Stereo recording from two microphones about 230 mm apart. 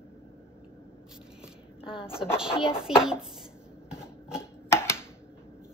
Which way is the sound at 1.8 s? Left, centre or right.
Left.